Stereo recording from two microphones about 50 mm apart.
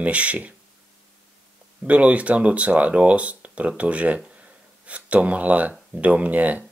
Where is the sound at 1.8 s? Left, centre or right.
Right.